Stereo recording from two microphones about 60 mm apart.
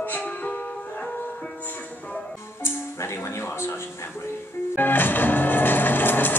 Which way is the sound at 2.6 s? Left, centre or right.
Left.